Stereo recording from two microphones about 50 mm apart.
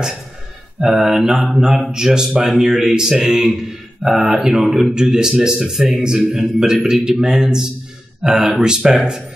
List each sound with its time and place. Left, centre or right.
0.7 s a man's voice: centre